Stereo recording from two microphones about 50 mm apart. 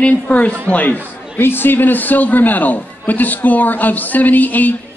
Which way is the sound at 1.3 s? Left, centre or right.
Left.